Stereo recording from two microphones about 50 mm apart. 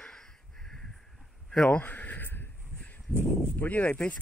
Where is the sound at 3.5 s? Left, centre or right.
Left.